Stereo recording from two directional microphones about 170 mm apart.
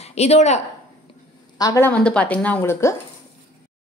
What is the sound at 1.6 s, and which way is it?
Speech, 20° left (ahead or behind).